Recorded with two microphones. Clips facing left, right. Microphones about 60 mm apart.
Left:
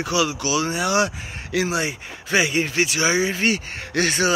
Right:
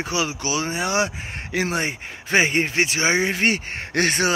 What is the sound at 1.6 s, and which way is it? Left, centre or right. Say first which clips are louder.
Speech: even; right.